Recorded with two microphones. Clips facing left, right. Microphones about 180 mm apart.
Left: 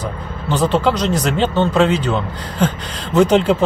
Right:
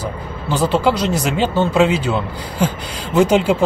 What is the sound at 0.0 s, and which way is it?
Speech, 10° right (ahead or behind).